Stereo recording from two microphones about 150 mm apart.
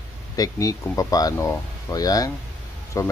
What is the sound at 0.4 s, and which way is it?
Speech, 25° left (ahead or behind).